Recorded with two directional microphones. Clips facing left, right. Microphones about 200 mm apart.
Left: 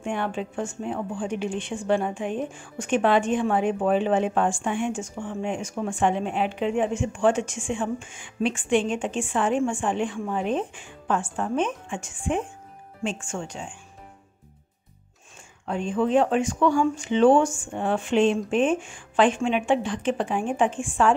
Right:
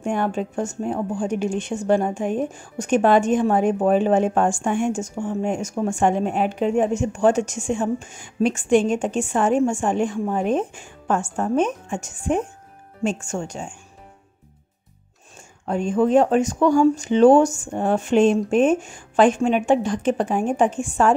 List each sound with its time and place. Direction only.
0.0 s speech: 45° right (ahead or behind)
15.6 s speech: 45° right (ahead or behind)